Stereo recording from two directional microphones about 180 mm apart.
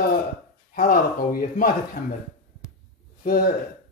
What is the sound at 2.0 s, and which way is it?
Speech, 65° left (ahead or behind).